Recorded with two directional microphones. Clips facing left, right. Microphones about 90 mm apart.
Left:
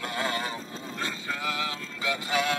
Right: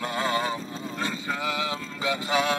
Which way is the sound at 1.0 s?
20° right (ahead or behind).